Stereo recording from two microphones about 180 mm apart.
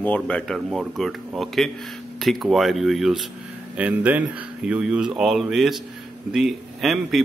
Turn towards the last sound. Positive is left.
turn(degrees=0)  # may be behind; listen again after turning